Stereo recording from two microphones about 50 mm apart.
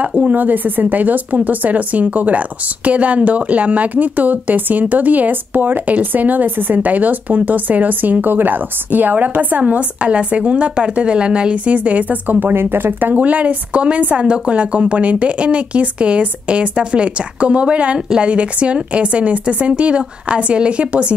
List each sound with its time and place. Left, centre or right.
0.0 s a woman's voice: right
13.1 s a woman's voice: right